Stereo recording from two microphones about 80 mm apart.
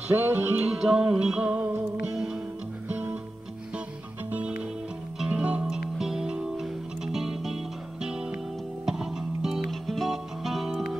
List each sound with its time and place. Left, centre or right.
0.1 s music: right
0.7 s music: centre
2.9 s music: right
4.3 s music: centre